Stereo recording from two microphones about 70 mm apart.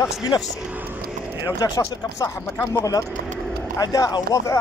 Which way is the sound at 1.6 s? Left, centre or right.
Left.